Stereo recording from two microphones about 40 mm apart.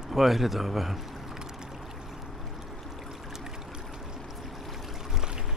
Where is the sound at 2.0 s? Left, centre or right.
Centre.